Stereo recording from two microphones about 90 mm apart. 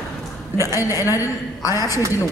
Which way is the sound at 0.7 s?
35° left (ahead or behind).